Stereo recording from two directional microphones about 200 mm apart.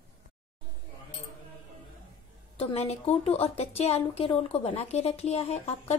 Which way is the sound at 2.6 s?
30° left (ahead or behind).